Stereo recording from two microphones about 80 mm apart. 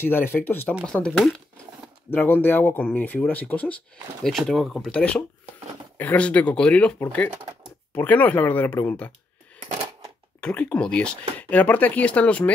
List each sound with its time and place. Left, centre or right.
0.0 s speech: left
0.8 s speech: centre
2.0 s speech: left
4.2 s speech: centre
4.9 s speech: centre
10.4 s speech: centre